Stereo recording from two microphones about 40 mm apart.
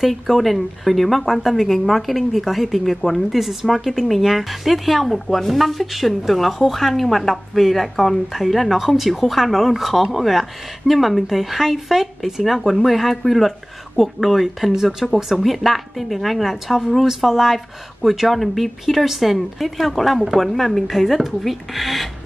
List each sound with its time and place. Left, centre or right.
0.0 s speech: centre